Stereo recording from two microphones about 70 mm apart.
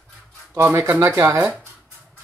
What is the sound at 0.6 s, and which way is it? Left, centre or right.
Speech, right.